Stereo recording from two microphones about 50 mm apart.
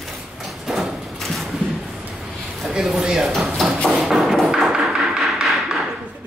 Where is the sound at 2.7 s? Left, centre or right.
Centre.